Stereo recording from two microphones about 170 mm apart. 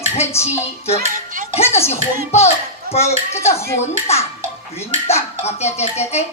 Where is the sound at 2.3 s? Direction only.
40° left (ahead or behind).